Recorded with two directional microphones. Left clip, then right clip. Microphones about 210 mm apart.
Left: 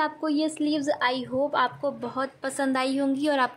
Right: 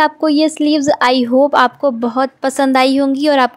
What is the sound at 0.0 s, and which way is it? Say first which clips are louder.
A woman's voice: right 13 dB; 40° right (ahead or behind).